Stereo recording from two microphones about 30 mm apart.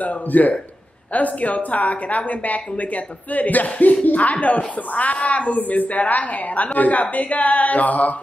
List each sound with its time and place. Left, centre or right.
0.0 s speech: left
5.6 s speech: left